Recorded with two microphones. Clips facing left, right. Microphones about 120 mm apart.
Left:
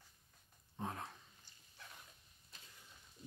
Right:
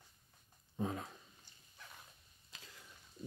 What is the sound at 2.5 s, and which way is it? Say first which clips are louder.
Mechanisms: right 4 dB; 90° right.